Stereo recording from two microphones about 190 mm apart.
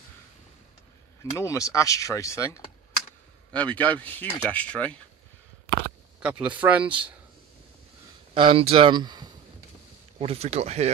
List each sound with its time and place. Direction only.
1.4 s speech: 15° left (ahead or behind)
6.2 s speech: 5° right (ahead or behind)
8.4 s speech: 30° right (ahead or behind)